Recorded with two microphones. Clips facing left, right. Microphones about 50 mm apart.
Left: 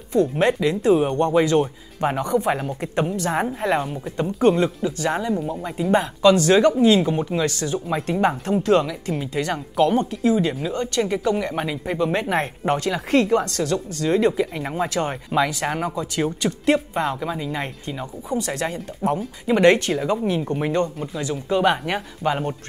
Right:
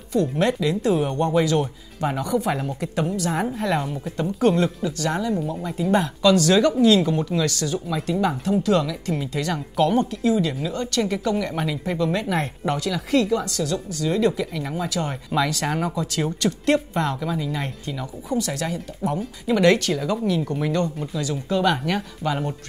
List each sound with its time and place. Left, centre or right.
0.1 s speech: left
3.9 s speech: left
8.8 s speech: left
12.1 s speech: left
14.1 s speech: left
15.3 s speech: centre